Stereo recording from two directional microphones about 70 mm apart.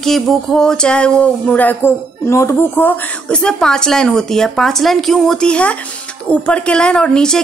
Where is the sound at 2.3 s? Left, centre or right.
Left.